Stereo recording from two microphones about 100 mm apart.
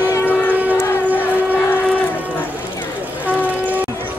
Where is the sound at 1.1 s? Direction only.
20° left (ahead or behind).